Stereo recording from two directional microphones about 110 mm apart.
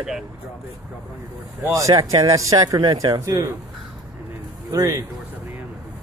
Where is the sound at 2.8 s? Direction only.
45° right (ahead or behind).